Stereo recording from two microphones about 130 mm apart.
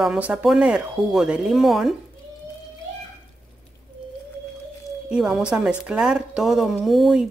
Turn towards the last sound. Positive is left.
turn(degrees=0)  # may be behind; listen again after turning